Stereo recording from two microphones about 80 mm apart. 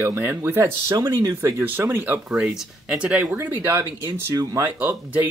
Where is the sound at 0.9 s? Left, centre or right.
Right.